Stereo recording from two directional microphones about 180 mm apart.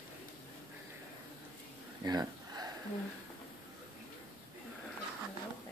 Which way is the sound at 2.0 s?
20° right (ahead or behind).